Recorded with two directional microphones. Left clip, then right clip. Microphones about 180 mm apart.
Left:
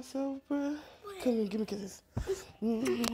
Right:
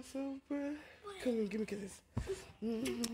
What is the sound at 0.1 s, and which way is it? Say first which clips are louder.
Speech: left 7 dB; 10° left (ahead or behind).